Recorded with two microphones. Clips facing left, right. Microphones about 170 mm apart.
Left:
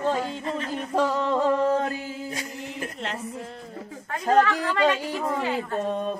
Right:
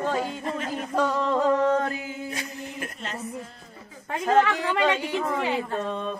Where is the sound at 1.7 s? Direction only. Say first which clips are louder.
Even; 30° left (ahead or behind).